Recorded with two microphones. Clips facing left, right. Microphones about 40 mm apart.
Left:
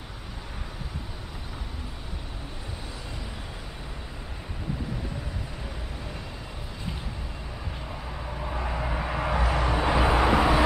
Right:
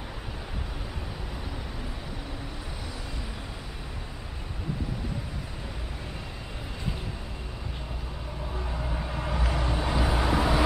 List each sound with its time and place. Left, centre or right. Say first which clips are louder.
8.4 s vehicle: left 4 dB; left